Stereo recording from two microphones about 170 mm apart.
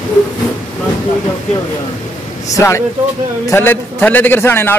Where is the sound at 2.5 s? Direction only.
15° left (ahead or behind).